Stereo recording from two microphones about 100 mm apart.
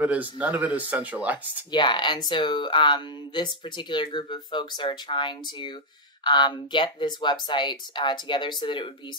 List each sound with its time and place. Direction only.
0.0 s speech: 15° right (ahead or behind)
1.7 s speech: 50° left (ahead or behind)